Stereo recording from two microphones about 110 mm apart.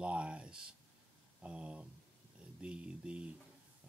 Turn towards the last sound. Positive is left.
turn(degrees=-10)  # may be behind; listen again after turning